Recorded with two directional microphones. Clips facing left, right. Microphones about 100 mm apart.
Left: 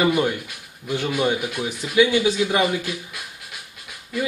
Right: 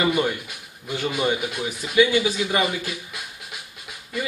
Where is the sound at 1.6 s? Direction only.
5° left (ahead or behind).